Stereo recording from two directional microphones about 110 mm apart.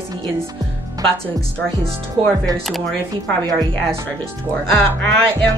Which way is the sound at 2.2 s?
50° right (ahead or behind).